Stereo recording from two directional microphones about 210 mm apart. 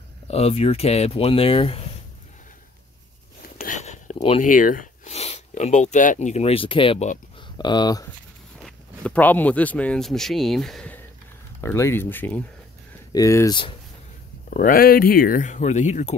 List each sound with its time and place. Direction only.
0.3 s speech: 30° left (ahead or behind)
3.5 s speech: 40° left (ahead or behind); by 8.1 s 20° left (ahead or behind)
8.6 s speech: 5° left (ahead or behind); by 13.7 s 20° left (ahead or behind)
14.5 s speech: 40° left (ahead or behind)